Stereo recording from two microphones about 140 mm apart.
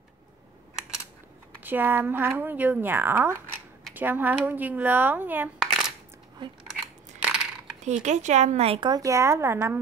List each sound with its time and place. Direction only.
1.6 s speech: 15° right (ahead or behind)
5.6 s coin: centre (ahead or behind)
7.2 s coin: 5° right (ahead or behind)
7.8 s speech: 55° right (ahead or behind); by 9.0 s 35° right (ahead or behind)
9.0 s speech: 20° right (ahead or behind)